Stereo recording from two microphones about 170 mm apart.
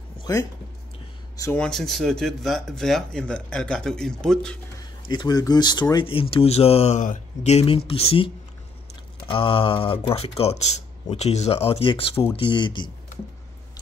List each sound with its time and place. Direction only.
0.3 s speech: 20° left (ahead or behind)
1.6 s speech: centre (ahead or behind)
5.1 s speech: 25° left (ahead or behind)
9.3 s speech: 30° left (ahead or behind)